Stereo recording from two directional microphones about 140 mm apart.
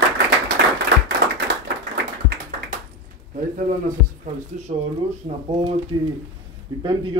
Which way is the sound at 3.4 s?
70° right (ahead or behind).